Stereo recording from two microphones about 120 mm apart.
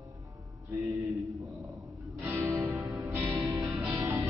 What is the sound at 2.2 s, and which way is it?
Music, 20° right (ahead or behind).